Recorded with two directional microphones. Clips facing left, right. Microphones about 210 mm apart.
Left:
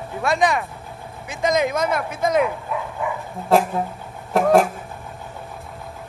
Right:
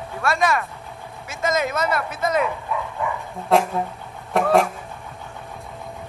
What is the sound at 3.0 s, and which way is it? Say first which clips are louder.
Dog: left 1 dB; centre (ahead or behind).